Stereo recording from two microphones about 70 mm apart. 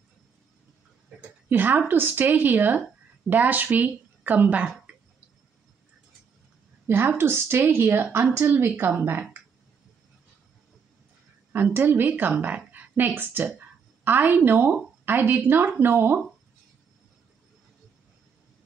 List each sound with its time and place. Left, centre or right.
1.5 s a woman's voice: right
6.9 s a woman's voice: right
11.5 s a woman's voice: right